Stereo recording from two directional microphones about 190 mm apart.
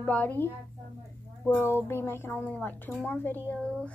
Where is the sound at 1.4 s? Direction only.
10° left (ahead or behind).